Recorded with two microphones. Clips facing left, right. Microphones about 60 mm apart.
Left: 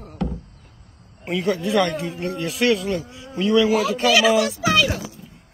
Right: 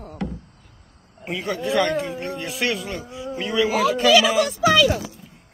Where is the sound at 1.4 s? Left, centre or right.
Right.